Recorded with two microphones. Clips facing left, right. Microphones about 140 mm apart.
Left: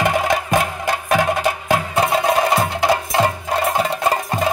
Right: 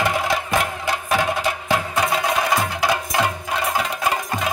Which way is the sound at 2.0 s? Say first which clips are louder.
Left 6 dB; 30° left (ahead or behind).